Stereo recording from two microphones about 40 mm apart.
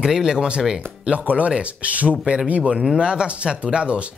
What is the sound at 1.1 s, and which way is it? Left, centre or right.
Speech, right.